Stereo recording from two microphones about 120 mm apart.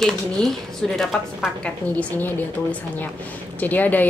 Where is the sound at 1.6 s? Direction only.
10° left (ahead or behind).